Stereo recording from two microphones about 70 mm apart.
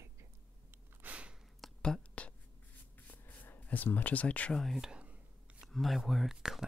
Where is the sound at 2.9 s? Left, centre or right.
Left.